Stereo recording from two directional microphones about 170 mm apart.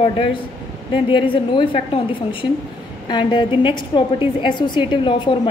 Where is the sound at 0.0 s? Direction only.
30° left (ahead or behind).